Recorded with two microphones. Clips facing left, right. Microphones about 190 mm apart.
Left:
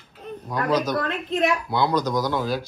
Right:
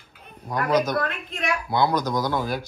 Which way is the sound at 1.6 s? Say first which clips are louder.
Even; 10° right (ahead or behind).